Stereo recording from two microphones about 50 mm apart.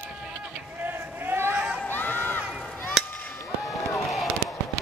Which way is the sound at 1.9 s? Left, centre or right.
Left.